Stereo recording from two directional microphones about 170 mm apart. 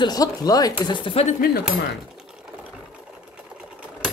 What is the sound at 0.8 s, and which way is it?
Speech, 30° left (ahead or behind).